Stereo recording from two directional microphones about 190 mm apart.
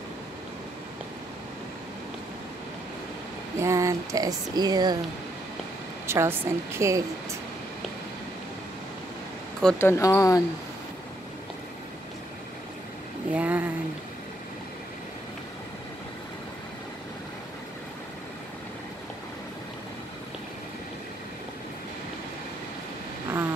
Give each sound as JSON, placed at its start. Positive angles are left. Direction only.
{"t": 3.5, "sound": "speech", "side_deg": -15}
{"t": 6.0, "sound": "a woman's voice", "side_deg": -10}
{"t": 9.6, "sound": "speech", "side_deg": 10}
{"t": 13.3, "sound": "a sound", "side_deg": -5}